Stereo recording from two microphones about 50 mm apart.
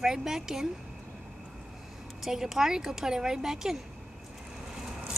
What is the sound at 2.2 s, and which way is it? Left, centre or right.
Speech, centre.